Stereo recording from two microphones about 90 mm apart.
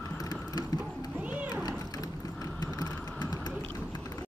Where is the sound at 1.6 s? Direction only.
45° left (ahead or behind).